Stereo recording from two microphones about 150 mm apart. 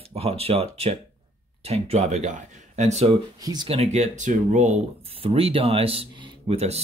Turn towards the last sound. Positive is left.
turn(degrees=-40)  # may be behind; listen again after turning